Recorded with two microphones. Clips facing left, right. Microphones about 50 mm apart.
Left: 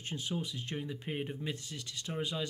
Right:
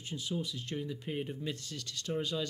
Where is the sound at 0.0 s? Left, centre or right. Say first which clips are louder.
Even; left.